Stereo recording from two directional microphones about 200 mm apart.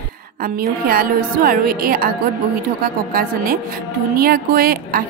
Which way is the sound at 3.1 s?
45° right (ahead or behind).